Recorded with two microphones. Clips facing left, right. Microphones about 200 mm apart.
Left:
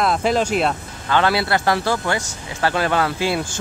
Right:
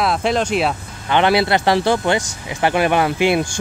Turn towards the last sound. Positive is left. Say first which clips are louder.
# right 4 dB
turn(degrees=-20)  # may be behind; listen again after turning